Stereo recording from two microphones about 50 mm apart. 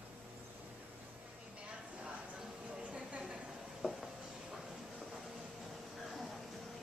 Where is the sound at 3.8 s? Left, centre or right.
Centre.